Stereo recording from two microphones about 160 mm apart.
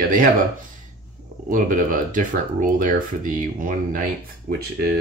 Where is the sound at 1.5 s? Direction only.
55° right (ahead or behind).